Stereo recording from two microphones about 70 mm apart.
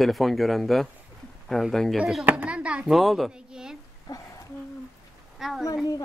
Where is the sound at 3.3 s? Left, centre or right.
Centre.